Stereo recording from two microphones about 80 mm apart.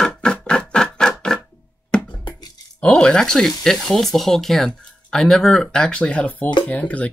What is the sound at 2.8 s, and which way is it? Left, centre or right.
Speech, centre.